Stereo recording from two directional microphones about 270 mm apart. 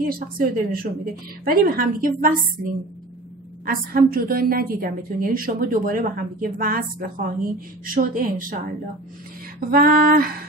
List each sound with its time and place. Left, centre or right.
0.0 s a woman's voice: right
9.7 s a woman's voice: right